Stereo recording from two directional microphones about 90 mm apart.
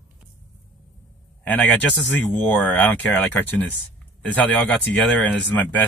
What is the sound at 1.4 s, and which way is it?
Speech, 20° left (ahead or behind).